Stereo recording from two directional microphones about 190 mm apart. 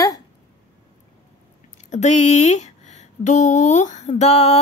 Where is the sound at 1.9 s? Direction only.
35° left (ahead or behind).